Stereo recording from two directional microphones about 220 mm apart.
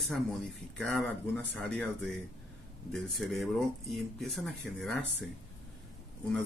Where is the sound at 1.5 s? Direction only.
5° left (ahead or behind).